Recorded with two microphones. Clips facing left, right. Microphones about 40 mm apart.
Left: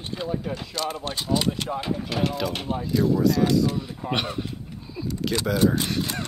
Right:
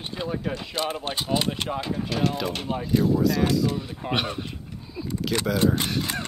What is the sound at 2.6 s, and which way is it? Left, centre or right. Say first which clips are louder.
Speech: right 4 dB; right.